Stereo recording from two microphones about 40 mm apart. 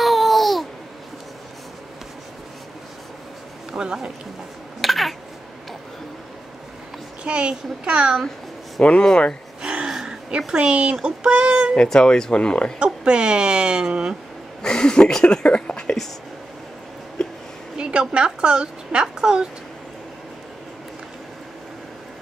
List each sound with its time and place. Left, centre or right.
0.0 s babbling: centre
3.7 s speech: centre
4.8 s a sound: centre
7.2 s a child's voice: right
8.8 s speech: left
9.6 s gasp: right
9.8 s a sound: centre
10.5 s speech: right
11.9 s speech: centre
12.7 s speech: right
14.6 s speech: centre
15.2 s a sound: left
17.7 s a woman's voice: right